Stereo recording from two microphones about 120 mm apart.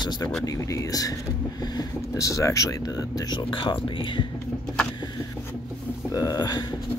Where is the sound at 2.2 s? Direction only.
25° left (ahead or behind).